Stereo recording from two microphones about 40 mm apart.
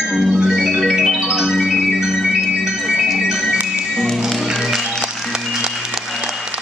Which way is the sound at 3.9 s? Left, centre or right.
Centre.